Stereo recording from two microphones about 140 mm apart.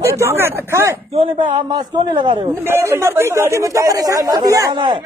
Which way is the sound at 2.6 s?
20° right (ahead or behind).